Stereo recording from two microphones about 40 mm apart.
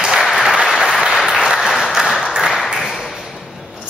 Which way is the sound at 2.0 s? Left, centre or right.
Centre.